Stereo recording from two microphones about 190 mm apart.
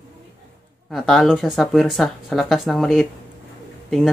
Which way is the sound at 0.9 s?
Centre (ahead or behind).